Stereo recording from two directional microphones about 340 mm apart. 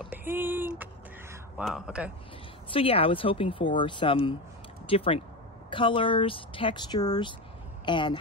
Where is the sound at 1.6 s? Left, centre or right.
Centre.